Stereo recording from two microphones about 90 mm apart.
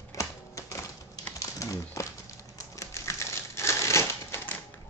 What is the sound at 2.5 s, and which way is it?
Crumpling, 35° left (ahead or behind).